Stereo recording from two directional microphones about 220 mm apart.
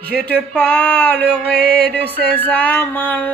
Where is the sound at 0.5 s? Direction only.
5° left (ahead or behind).